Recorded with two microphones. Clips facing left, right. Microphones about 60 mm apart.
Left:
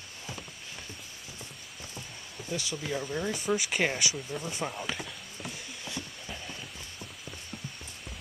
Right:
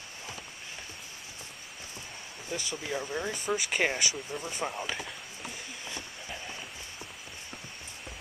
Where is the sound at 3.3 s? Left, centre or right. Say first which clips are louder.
Left 3 dB; centre.